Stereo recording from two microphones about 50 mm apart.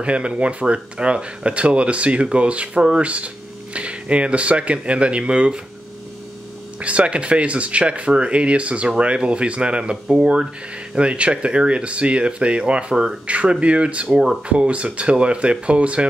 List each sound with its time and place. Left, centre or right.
0.0 s speech: right
6.8 s speech: right
14.1 s speech: centre
14.5 s speech: right